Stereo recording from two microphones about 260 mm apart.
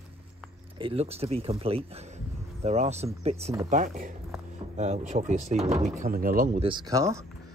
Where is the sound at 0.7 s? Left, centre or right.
Right.